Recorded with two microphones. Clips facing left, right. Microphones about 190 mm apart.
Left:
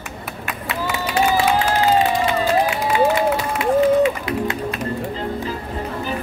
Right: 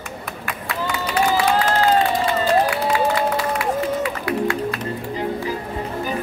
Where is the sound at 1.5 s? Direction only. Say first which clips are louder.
Even; 10° left (ahead or behind).